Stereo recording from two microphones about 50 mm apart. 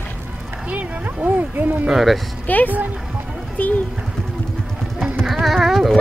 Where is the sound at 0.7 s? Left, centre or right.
Right.